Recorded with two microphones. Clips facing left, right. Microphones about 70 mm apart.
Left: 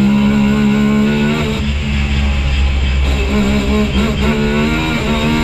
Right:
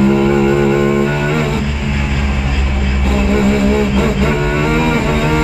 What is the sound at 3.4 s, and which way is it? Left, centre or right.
Music, centre.